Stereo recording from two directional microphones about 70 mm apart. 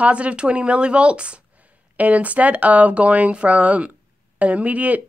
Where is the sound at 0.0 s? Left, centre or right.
Centre.